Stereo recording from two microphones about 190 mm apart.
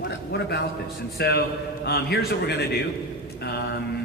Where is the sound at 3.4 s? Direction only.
60° left (ahead or behind).